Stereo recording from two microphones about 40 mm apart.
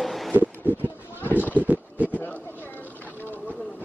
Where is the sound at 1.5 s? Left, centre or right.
Right.